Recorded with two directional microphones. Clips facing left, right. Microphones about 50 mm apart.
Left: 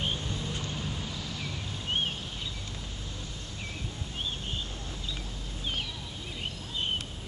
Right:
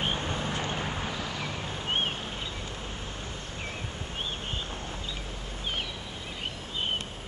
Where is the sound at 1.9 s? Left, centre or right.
Right.